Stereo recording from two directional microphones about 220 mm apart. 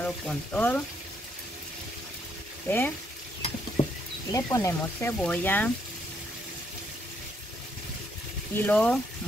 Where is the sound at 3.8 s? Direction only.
30° left (ahead or behind).